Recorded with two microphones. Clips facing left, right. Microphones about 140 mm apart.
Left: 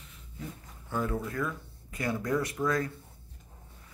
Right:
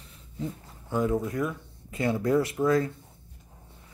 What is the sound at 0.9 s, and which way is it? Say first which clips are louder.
Speech: right 6 dB; 15° right (ahead or behind).